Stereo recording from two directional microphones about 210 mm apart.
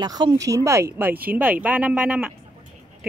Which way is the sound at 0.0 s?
20° right (ahead or behind).